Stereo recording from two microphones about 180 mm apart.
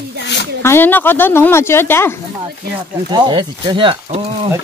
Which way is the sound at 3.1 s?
25° right (ahead or behind).